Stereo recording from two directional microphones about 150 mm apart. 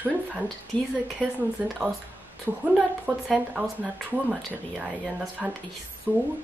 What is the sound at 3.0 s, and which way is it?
Speech, centre (ahead or behind).